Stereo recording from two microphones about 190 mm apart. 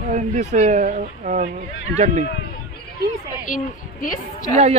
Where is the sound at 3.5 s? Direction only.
45° left (ahead or behind).